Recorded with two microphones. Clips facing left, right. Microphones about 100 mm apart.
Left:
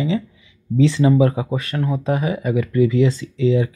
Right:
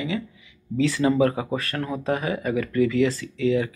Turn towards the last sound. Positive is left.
turn(degrees=25)  # may be behind; listen again after turning